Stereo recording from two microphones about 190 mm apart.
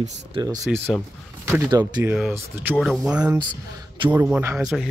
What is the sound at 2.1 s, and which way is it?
A man's voice, 5° right (ahead or behind).